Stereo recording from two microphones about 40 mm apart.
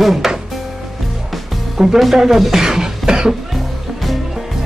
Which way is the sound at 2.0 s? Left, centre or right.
Centre.